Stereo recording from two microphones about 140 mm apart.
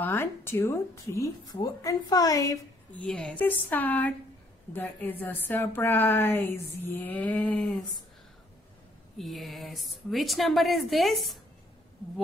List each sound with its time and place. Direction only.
0.0 s speech: 15° left (ahead or behind)
2.9 s a woman's voice: 10° left (ahead or behind)
9.2 s a woman's voice: centre (ahead or behind)